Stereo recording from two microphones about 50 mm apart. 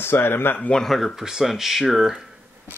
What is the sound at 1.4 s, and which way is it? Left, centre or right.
Speech, centre.